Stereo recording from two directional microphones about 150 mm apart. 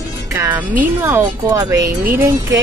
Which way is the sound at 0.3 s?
15° right (ahead or behind).